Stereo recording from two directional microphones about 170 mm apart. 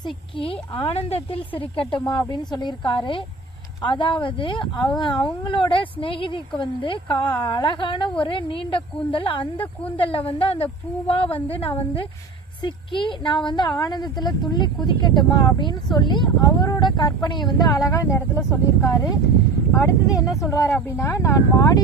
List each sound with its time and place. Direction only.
0.0 s speech: 30° left (ahead or behind)